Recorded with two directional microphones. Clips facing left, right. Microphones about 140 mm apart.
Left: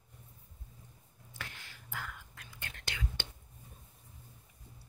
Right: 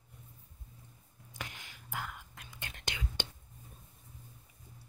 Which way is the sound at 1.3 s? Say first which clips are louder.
Right 2 dB; 15° right (ahead or behind).